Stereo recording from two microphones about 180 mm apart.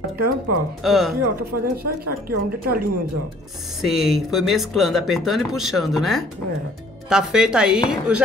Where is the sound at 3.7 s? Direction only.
Centre (ahead or behind).